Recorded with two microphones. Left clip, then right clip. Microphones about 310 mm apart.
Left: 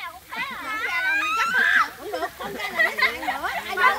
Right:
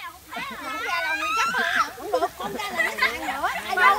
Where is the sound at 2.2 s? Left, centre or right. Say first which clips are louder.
Right 2 dB; right.